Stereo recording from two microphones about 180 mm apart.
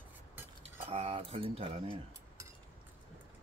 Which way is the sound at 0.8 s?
35° right (ahead or behind).